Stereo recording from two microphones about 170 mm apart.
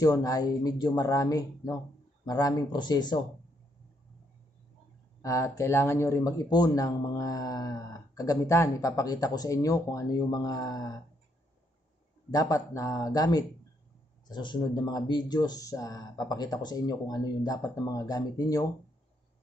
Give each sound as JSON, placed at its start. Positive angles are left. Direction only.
{"t": 0.0, "sound": "speech", "side_deg": 20}
{"t": 5.2, "sound": "speech", "side_deg": 20}
{"t": 12.3, "sound": "speech", "side_deg": 20}